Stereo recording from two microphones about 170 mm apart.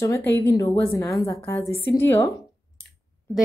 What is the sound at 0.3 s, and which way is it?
A woman's voice, 20° left (ahead or behind).